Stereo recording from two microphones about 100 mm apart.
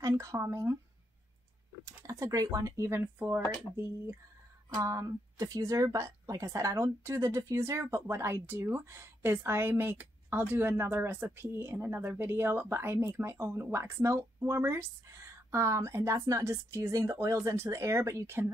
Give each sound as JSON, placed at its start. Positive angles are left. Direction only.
{"t": 0.2, "sound": "a woman's voice", "side_deg": -30}
{"t": 1.9, "sound": "a woman's voice", "side_deg": -30}
{"t": 4.8, "sound": "a woman's voice", "side_deg": -35}